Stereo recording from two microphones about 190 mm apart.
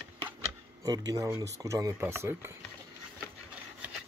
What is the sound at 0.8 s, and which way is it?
Speech, 20° right (ahead or behind).